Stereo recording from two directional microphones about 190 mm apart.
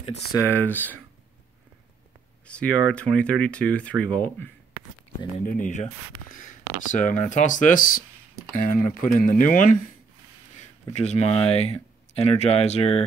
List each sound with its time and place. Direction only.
0.5 s speech: 10° left (ahead or behind)
2.4 s speech: 5° left (ahead or behind)
5.4 s speech: 45° left (ahead or behind)